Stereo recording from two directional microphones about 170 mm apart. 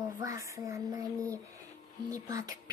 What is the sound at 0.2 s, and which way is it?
Speech, 20° right (ahead or behind).